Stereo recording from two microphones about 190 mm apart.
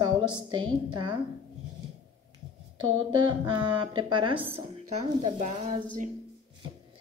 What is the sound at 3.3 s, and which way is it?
A woman's voice, 25° right (ahead or behind).